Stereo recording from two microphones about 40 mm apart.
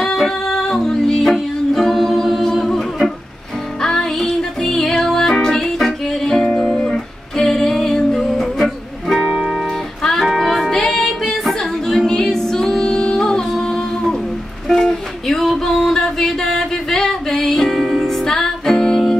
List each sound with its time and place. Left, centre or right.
0.0 s music: centre
6.2 s music: centre